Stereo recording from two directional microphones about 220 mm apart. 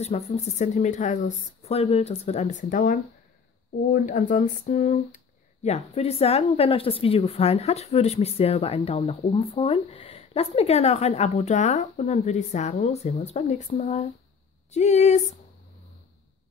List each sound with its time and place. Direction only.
0.0 s speech: 30° left (ahead or behind)